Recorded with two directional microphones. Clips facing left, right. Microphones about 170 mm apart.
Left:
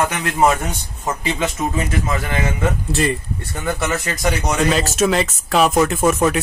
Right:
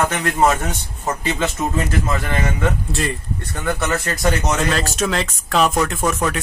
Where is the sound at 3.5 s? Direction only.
Centre (ahead or behind).